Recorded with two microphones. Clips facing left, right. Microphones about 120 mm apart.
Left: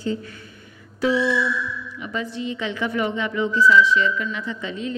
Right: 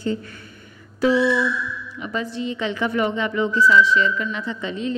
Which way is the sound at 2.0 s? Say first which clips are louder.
Right 2 dB; 40° right (ahead or behind).